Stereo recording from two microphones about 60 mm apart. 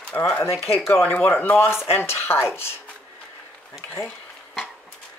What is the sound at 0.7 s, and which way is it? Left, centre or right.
Speech, left.